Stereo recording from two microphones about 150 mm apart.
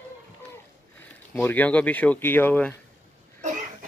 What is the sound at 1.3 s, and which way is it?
Speech, 10° left (ahead or behind).